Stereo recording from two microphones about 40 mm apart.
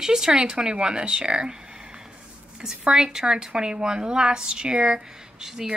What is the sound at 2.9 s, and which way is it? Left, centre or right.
Speech, centre.